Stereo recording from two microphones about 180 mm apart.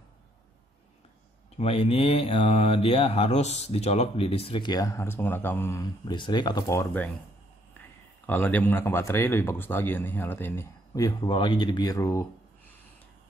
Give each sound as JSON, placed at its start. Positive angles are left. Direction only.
{"t": 1.6, "sound": "speech", "side_deg": 35}
{"t": 8.3, "sound": "speech", "side_deg": 10}